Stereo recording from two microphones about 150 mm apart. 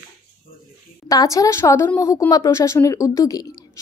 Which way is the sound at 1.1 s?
25° left (ahead or behind).